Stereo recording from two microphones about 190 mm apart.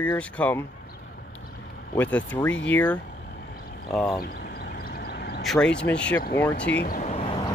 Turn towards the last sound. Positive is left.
turn(degrees=25)  # may be behind; listen again after turning